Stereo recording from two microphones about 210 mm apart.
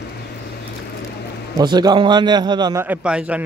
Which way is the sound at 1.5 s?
20° right (ahead or behind).